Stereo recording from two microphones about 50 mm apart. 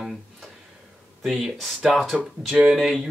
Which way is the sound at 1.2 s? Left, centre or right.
Centre.